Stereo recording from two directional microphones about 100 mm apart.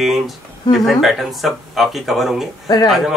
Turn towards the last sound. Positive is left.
turn(degrees=0)  # may be behind; listen again after turning